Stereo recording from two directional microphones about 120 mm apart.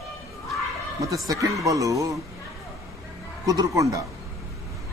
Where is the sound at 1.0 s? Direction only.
25° right (ahead or behind).